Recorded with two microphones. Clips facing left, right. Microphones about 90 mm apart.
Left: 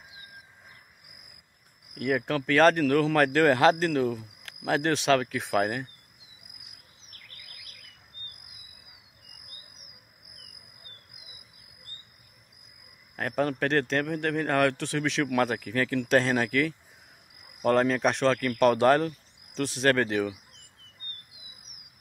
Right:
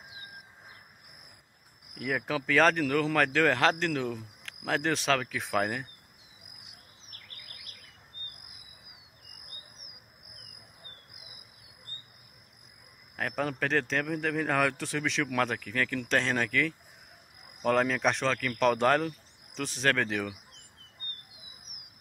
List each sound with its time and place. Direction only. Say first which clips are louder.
2.0 s speech: left 4 dB; centre (ahead or behind)
13.1 s speech: left 4 dB; centre (ahead or behind)